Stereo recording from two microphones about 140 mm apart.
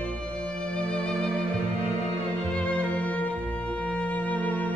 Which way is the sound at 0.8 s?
5° left (ahead or behind).